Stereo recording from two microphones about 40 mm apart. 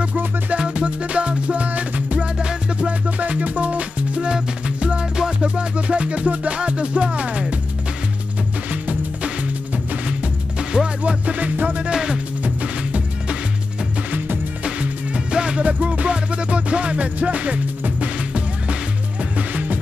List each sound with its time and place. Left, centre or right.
0.5 s music: right
2.3 s music: right
2.9 s music: right; by 5.7 s centre
5.8 s music: right
10.0 s music: right
11.0 s music: right
11.9 s music: centre
12.4 s music: right
14.6 s music: right
19.3 s music: right